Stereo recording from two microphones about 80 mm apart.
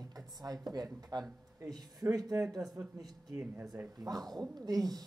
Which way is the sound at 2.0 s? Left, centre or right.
Right.